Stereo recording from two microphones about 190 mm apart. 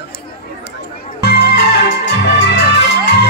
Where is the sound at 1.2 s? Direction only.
60° left (ahead or behind).